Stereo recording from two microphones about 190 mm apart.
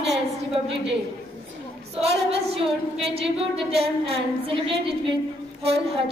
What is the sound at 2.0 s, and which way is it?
Singing, 35° right (ahead or behind).